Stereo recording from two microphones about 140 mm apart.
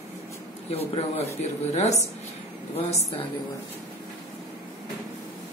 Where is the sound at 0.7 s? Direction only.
45° left (ahead or behind).